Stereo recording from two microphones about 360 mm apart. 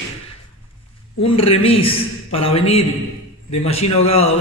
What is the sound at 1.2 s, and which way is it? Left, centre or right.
A man's voice, centre.